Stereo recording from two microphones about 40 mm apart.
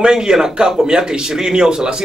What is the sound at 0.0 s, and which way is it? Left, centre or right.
A man's voice, centre.